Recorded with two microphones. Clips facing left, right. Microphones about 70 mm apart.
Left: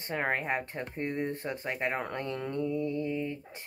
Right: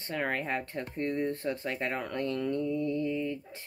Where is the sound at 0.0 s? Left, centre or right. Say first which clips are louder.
Left 1 dB; left.